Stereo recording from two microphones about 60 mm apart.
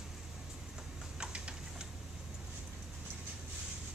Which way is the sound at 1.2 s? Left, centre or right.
Centre.